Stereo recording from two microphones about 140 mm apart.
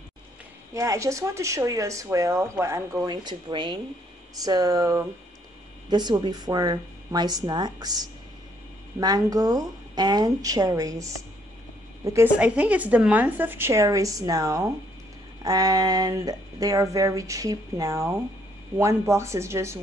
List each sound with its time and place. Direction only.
0.7 s a woman's voice: 20° right (ahead or behind)
12.4 s a woman's voice: 10° right (ahead or behind)